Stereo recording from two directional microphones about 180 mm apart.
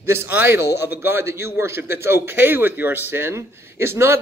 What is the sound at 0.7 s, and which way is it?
Speech, 65° left (ahead or behind).